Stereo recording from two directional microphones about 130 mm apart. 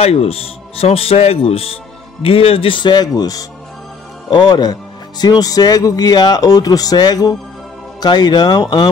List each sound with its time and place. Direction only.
0.0 s speech: 50° left (ahead or behind); by 8.8 s 30° left (ahead or behind)